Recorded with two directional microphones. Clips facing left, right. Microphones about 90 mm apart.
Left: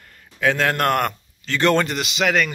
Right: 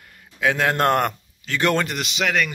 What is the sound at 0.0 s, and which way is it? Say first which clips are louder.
A man's voice: left 1 dB; 10° right (ahead or behind).